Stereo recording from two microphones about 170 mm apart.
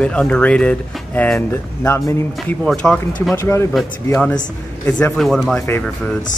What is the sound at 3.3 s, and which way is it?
Speech, 15° left (ahead or behind).